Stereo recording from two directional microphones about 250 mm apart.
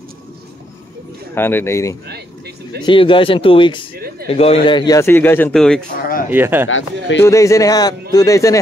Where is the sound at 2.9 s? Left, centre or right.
Centre.